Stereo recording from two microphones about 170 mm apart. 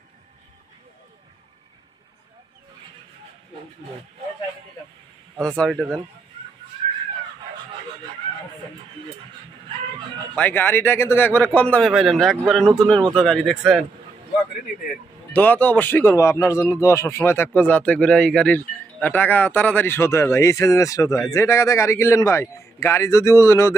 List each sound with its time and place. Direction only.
5.6 s speech: centre (ahead or behind)
10.3 s speech: 10° left (ahead or behind)
15.3 s speech: 10° left (ahead or behind)